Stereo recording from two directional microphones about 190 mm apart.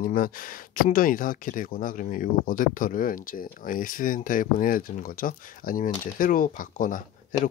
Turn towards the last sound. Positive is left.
turn(degrees=45)  # may be behind; listen again after turning